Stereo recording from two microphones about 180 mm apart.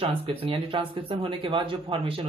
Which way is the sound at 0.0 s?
30° right (ahead or behind).